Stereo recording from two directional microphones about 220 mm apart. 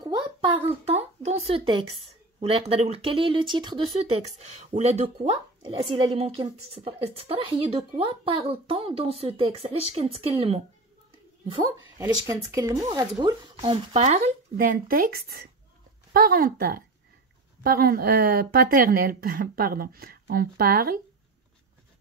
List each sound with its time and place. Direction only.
0.0 s a child's voice: 20° right (ahead or behind)
12.0 s a woman's voice: 15° right (ahead or behind); by 20.9 s 40° right (ahead or behind)